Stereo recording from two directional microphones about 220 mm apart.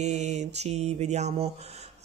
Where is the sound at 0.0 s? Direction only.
30° right (ahead or behind).